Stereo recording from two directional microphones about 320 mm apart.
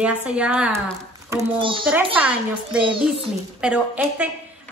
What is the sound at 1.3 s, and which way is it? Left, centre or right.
Speech, centre.